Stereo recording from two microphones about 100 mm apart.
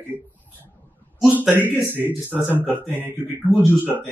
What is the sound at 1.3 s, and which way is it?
Speech, 15° right (ahead or behind).